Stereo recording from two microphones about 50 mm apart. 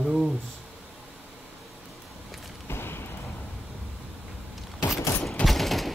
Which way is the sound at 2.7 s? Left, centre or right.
Left.